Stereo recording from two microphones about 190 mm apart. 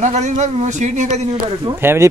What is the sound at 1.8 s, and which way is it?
Speech, 10° right (ahead or behind).